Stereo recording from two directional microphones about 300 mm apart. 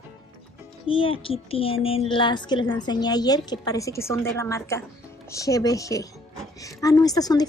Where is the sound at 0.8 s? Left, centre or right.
Centre.